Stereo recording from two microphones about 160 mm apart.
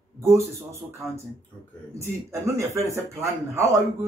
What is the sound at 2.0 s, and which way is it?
Speech, 20° right (ahead or behind).